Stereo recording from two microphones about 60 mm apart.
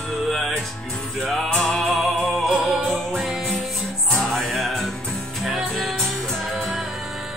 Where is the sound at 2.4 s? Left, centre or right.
Centre.